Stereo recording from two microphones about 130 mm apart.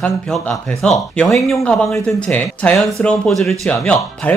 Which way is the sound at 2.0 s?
10° left (ahead or behind).